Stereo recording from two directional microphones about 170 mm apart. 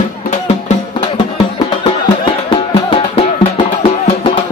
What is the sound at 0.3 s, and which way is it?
Music, 40° left (ahead or behind).